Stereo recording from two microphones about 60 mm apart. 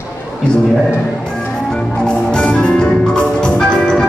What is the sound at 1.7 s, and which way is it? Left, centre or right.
Music, centre.